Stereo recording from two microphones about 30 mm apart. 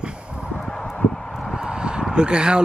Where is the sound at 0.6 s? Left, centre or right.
Centre.